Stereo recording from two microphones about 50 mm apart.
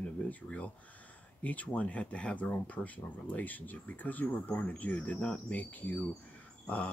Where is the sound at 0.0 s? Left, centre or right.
Left.